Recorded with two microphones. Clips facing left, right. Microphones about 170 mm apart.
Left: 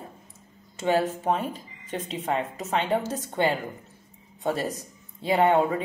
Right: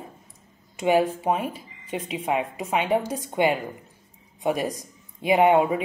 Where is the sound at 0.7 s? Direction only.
15° right (ahead or behind).